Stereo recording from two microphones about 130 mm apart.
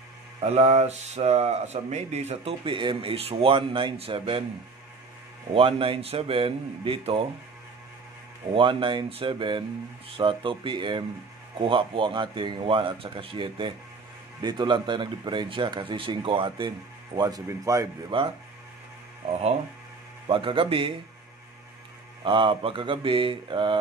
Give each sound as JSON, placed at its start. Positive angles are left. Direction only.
{"t": 0.4, "sound": "speech", "side_deg": -55}
{"t": 5.5, "sound": "speech", "side_deg": -45}
{"t": 8.5, "sound": "speech", "side_deg": -40}
{"t": 18.1, "sound": "speech", "side_deg": -40}
{"t": 20.2, "sound": "speech", "side_deg": -40}
{"t": 22.2, "sound": "speech", "side_deg": -40}